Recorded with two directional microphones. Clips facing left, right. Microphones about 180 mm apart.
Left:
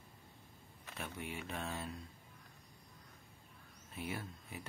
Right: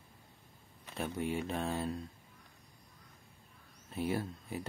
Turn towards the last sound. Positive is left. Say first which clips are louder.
# right 9 dB
turn(degrees=-35)  # may be behind; listen again after turning